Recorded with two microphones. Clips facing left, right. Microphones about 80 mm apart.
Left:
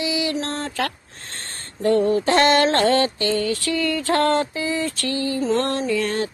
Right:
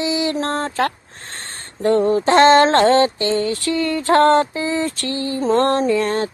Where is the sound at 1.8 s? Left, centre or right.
Right.